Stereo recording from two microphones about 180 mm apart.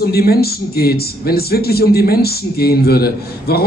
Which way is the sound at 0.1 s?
60° left (ahead or behind).